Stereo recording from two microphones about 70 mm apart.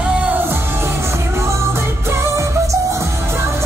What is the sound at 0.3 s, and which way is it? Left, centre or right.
Music, right.